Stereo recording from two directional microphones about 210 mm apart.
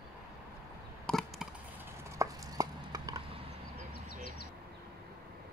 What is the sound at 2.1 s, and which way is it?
Chopping, 15° right (ahead or behind).